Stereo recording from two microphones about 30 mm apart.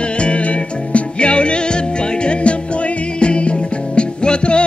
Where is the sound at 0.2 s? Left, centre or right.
Left.